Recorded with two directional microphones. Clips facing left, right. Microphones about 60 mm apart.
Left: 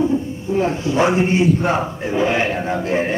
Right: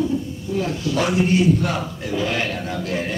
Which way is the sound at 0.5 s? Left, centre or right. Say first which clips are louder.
Left 5 dB; left.